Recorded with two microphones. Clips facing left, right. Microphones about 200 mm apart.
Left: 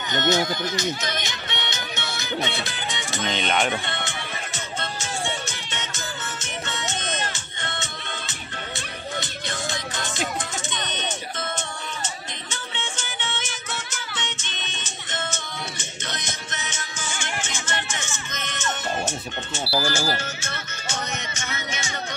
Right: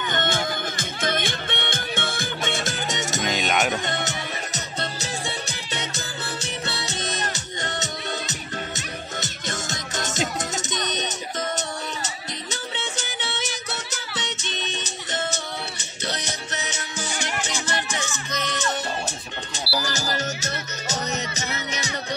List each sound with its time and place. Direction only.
0.1 s speech: 50° right (ahead or behind)
3.3 s speech: 5° right (ahead or behind)
3.8 s music: 40° right (ahead or behind)